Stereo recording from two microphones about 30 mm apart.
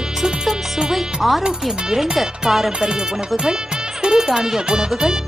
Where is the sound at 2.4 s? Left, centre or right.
Centre.